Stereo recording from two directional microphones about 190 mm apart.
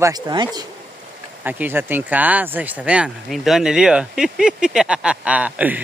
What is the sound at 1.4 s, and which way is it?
Speech, 10° right (ahead or behind).